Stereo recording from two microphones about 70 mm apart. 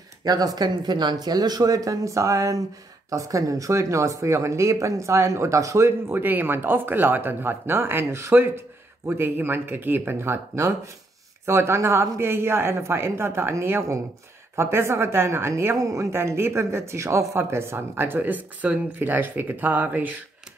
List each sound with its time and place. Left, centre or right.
0.2 s speech: right